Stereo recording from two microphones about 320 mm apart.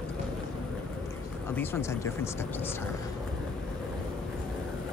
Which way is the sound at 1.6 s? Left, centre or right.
Centre.